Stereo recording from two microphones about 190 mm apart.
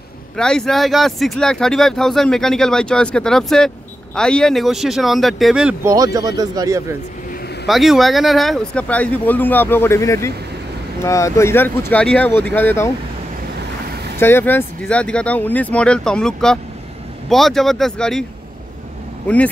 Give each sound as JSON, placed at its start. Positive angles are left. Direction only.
{"t": 0.4, "sound": "speech", "side_deg": 5}
{"t": 5.9, "sound": "speech", "side_deg": -20}
{"t": 7.6, "sound": "speech", "side_deg": 0}
{"t": 14.1, "sound": "speech", "side_deg": 10}
{"t": 19.2, "sound": "speech", "side_deg": 5}